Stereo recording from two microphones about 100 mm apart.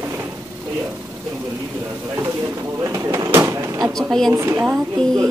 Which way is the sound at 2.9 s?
30° right (ahead or behind).